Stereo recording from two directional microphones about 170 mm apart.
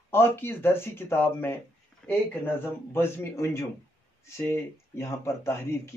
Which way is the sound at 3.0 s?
15° left (ahead or behind).